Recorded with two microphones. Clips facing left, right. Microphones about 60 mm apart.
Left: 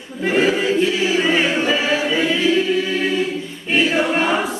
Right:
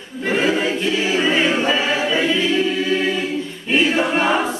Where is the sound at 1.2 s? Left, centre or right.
Centre.